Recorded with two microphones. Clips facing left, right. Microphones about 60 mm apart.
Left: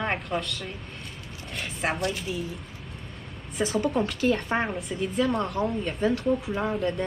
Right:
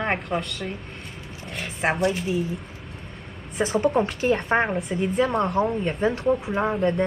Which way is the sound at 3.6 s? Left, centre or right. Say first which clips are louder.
Right 3 dB; right.